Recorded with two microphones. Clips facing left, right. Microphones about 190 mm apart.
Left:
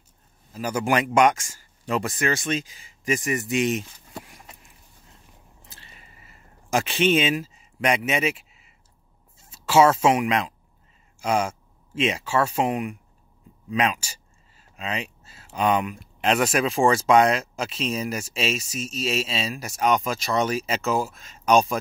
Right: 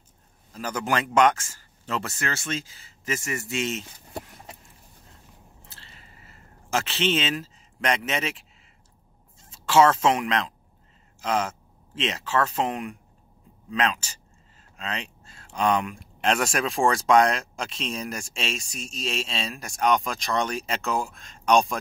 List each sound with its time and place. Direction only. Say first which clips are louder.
0.5 s speech: left 4 dB; 10° left (ahead or behind)
5.7 s a sound: left 3 dB; 15° left (ahead or behind)
9.4 s speech: left 1 dB; 10° left (ahead or behind)